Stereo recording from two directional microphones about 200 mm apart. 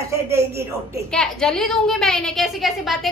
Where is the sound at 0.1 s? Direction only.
15° right (ahead or behind).